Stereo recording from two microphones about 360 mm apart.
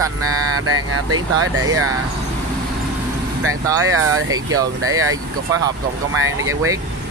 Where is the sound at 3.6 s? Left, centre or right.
Centre.